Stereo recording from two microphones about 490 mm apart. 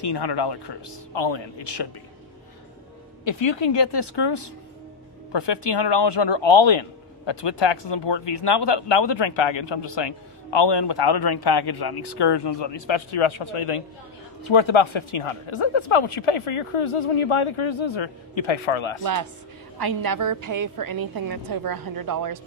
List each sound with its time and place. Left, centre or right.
0.0 s speech: left
3.3 s a man's voice: left
14.5 s speech: left
19.8 s a woman's voice: right